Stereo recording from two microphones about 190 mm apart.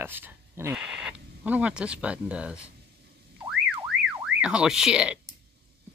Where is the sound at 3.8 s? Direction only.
5° right (ahead or behind).